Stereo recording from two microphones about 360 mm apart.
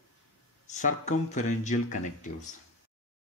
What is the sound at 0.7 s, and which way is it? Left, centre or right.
Speech, left.